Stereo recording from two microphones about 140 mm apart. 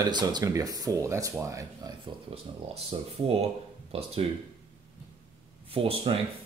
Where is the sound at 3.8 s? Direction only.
45° right (ahead or behind).